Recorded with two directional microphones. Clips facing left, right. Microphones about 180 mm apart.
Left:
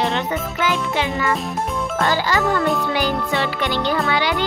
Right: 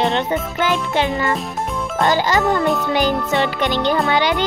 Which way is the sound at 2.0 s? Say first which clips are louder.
Right 4 dB; 20° right (ahead or behind).